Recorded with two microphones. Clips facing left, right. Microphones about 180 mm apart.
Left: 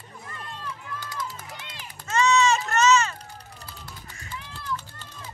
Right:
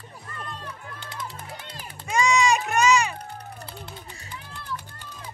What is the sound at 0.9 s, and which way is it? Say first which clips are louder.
Music: left 3 dB; 25° right (ahead or behind).